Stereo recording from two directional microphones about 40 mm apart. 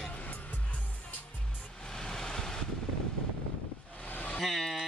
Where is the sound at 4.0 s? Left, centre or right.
Left.